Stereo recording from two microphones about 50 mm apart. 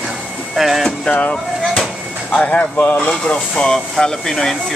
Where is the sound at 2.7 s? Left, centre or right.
Left.